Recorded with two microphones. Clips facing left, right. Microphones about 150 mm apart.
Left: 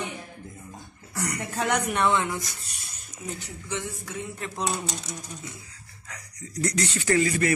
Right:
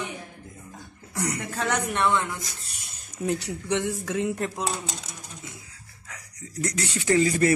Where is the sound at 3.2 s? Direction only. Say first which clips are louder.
Right 9 dB; 80° right.